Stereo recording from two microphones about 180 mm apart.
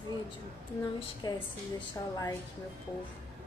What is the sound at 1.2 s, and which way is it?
Speech, 25° left (ahead or behind).